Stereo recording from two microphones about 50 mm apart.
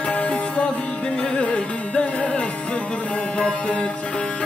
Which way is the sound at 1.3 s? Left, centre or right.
Left.